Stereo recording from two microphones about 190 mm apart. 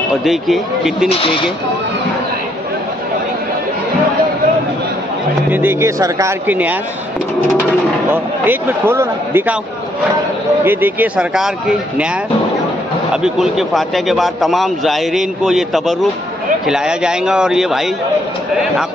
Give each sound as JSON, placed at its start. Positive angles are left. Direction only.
{"t": 0.2, "sound": "a man's voice", "side_deg": 0}
{"t": 1.0, "sound": "speech", "side_deg": 25}
{"t": 5.5, "sound": "a man's voice", "side_deg": -10}
{"t": 8.1, "sound": "a man's voice", "side_deg": -10}
{"t": 10.6, "sound": "a man's voice", "side_deg": -10}
{"t": 13.1, "sound": "a man's voice", "side_deg": -5}